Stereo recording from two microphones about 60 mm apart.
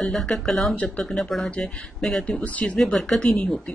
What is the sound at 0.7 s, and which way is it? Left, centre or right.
Speech, left.